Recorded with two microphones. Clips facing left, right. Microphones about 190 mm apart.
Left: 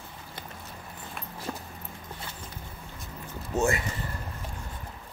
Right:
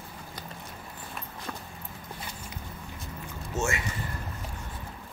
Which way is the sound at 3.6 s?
35° left (ahead or behind).